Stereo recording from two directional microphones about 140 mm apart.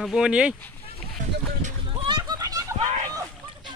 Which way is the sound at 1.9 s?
35° right (ahead or behind).